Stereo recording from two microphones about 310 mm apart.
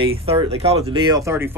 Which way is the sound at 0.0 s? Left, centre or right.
Centre.